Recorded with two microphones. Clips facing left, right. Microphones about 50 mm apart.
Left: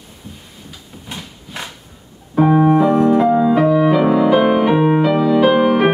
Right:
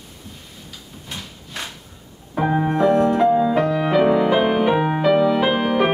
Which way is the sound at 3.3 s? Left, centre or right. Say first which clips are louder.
Left 3 dB; centre.